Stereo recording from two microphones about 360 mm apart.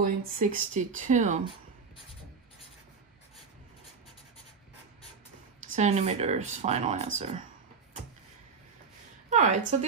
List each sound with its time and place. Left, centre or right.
0.0 s speech: right
5.6 s speech: centre
9.3 s a woman's voice: centre